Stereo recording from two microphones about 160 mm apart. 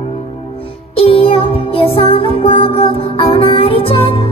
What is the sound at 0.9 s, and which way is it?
Music, 35° left (ahead or behind).